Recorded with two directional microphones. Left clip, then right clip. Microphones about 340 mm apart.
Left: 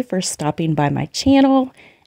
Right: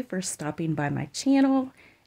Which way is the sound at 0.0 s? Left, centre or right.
Left.